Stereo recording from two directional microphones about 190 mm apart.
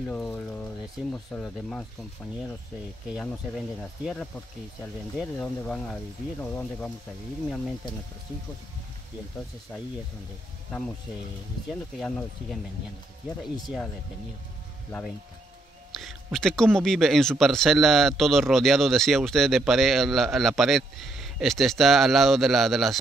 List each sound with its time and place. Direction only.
0.0 s speech: 10° left (ahead or behind)
3.1 s speech: centre (ahead or behind)
12.0 s speech: 5° left (ahead or behind)
16.0 s speech: centre (ahead or behind)